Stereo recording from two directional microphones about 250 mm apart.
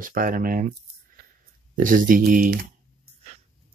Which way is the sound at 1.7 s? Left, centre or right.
Right.